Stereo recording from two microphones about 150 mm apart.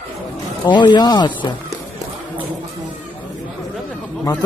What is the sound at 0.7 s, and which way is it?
Speech, 30° left (ahead or behind).